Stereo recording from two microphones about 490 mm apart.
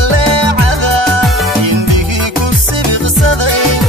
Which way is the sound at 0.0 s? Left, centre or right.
Right.